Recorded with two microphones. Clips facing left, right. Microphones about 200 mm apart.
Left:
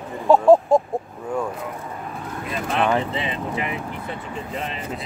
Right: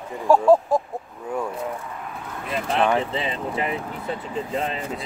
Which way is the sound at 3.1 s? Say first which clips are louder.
Even; 35° right (ahead or behind).